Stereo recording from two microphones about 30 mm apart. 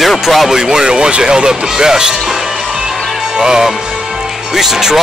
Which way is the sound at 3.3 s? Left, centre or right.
Centre.